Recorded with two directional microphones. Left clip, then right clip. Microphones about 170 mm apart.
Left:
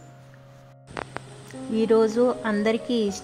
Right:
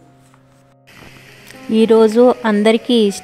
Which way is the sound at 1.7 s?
50° right (ahead or behind).